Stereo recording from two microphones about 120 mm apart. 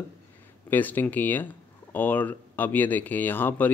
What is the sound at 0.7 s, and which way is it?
Speech, 15° left (ahead or behind).